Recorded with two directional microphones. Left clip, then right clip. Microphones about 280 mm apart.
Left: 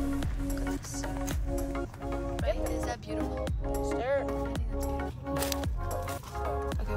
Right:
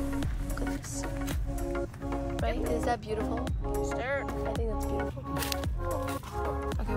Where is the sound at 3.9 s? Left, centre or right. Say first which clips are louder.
Left 5 dB; centre.